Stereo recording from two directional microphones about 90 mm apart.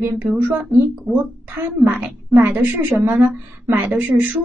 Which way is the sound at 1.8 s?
15° right (ahead or behind).